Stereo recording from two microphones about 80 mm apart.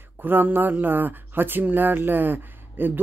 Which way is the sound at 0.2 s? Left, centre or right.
Right.